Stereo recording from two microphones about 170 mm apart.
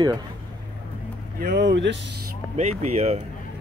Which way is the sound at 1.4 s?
80° right.